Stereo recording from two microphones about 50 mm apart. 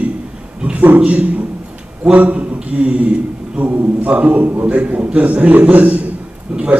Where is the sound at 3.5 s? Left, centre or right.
Right.